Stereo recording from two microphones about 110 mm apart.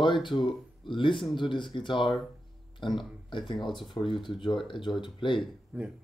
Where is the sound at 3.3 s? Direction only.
45° left (ahead or behind).